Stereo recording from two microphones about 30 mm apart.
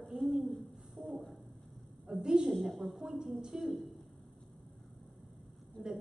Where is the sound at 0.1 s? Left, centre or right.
Right.